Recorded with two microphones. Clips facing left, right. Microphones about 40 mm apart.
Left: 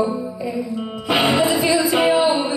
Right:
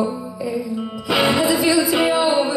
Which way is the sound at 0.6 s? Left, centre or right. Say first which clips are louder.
Even; centre.